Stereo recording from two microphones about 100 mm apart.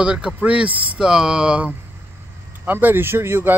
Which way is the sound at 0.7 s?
60° right (ahead or behind).